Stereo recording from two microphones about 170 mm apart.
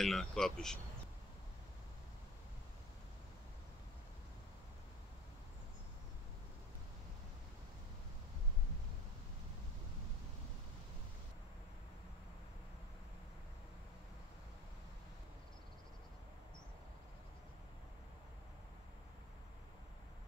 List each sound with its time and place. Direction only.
0.0 s speech: centre (ahead or behind)